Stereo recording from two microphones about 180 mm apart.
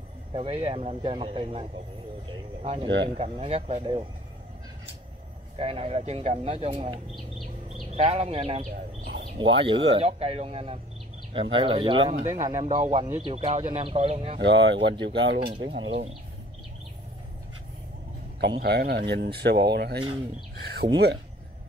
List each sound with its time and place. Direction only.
0.3 s speech: 35° right (ahead or behind)
2.9 s speech: 75° right (ahead or behind)
3.2 s speech: 35° right (ahead or behind)
5.6 s speech: 30° right (ahead or behind)
7.2 s bird: centre (ahead or behind)
7.8 s speech: 35° right (ahead or behind)
9.0 s a sound: 55° right (ahead or behind)
9.6 s speech: 30° right (ahead or behind)
12.7 s speech: 40° right (ahead or behind)
14.4 s speech: 80° right
14.8 s speech: 25° right (ahead or behind)
15.0 s speech: 75° right (ahead or behind)
15.6 s speech: 90° right
18.4 s speech: 70° right (ahead or behind)